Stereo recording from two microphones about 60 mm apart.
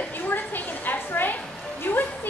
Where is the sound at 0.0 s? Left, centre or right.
Left.